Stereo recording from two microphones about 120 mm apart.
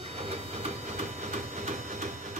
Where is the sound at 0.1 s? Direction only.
60° right (ahead or behind).